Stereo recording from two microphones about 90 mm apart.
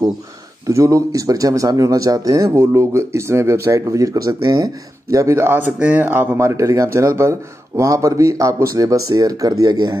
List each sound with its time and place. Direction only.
0.7 s speech: 35° right (ahead or behind)
5.1 s speech: 35° right (ahead or behind); by 9.9 s 50° right (ahead or behind)